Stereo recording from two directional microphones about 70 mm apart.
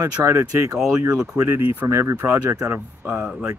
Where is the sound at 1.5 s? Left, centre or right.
Right.